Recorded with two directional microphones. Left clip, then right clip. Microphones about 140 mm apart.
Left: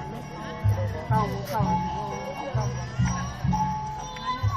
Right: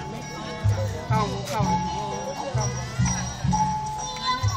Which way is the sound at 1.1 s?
10° left (ahead or behind).